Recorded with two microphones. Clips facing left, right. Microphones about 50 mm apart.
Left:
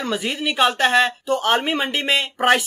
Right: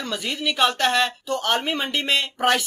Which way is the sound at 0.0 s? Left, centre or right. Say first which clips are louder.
Left 3 dB; centre.